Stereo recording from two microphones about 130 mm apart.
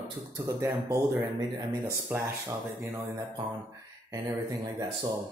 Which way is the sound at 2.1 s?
15° right (ahead or behind).